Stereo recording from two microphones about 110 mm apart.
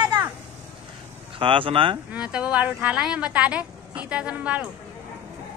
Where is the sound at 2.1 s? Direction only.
10° right (ahead or behind).